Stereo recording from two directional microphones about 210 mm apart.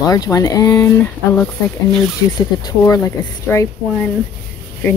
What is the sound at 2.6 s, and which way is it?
Speech, 15° left (ahead or behind).